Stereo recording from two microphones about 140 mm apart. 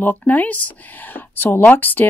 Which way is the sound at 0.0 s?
10° left (ahead or behind).